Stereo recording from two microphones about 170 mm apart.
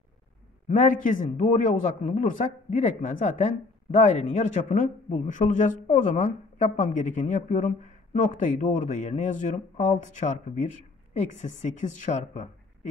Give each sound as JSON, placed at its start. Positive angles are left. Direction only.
{"t": 0.7, "sound": "a man's voice", "side_deg": 50}